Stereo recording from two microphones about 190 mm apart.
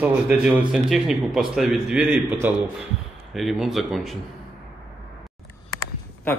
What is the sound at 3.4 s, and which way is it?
Speech, centre (ahead or behind).